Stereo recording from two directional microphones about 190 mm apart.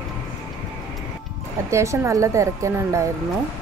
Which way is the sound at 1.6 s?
15° right (ahead or behind).